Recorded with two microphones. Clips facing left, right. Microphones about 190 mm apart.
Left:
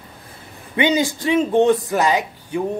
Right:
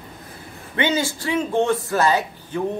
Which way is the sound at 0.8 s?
15° left (ahead or behind).